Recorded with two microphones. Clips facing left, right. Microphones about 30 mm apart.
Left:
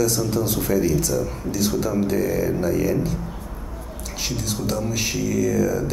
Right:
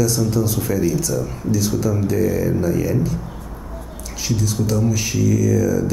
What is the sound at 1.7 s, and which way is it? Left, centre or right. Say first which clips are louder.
Speech: right 2 dB; left.